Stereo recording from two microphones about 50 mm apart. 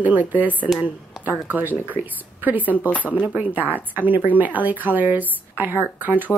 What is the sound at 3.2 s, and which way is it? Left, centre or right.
Speech, right.